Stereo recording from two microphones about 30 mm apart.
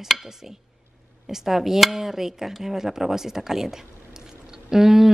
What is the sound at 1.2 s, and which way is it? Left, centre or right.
Speech, centre.